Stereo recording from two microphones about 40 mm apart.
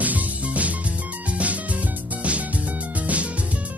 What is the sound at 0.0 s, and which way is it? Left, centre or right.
Music, right.